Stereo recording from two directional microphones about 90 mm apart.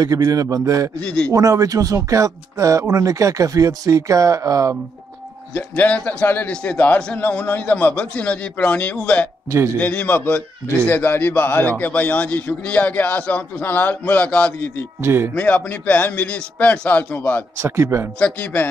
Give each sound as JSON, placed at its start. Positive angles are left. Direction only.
{"t": 0.0, "sound": "speech", "side_deg": -40}
{"t": 1.0, "sound": "a man's voice", "side_deg": 10}
{"t": 1.3, "sound": "speech", "side_deg": -40}
{"t": 5.5, "sound": "a man's voice", "side_deg": 15}
{"t": 15.0, "sound": "speech", "side_deg": -30}
{"t": 15.3, "sound": "a man's voice", "side_deg": 20}
{"t": 17.6, "sound": "speech", "side_deg": -30}
{"t": 18.2, "sound": "a man's voice", "side_deg": 15}